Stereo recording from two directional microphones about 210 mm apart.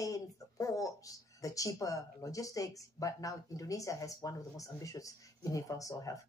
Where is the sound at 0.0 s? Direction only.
15° left (ahead or behind).